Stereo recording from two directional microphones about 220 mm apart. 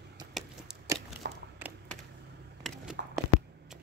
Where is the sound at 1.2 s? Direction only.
45° right (ahead or behind).